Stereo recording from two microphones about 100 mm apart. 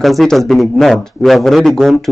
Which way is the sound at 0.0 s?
Centre (ahead or behind).